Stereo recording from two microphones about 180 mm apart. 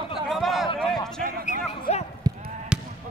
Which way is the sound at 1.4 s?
40° left (ahead or behind).